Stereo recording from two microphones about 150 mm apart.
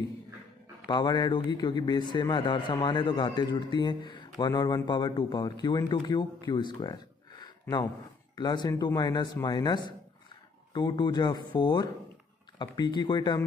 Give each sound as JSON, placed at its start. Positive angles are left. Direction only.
{"t": 0.8, "sound": "a man's voice", "side_deg": 30}